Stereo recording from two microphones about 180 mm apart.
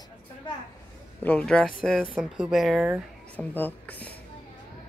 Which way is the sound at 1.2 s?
5° left (ahead or behind).